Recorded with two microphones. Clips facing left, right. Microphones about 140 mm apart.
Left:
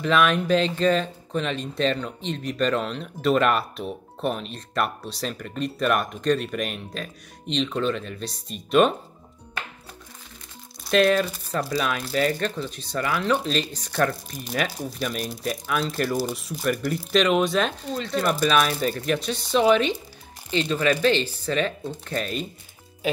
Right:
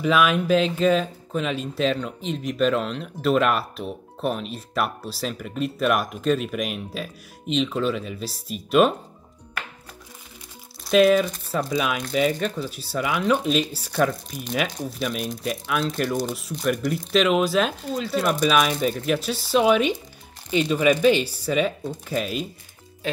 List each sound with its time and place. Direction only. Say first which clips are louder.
0.0 s speech: right 1 dB; 5° right (ahead or behind)
10.8 s speech: right 3 dB; centre (ahead or behind)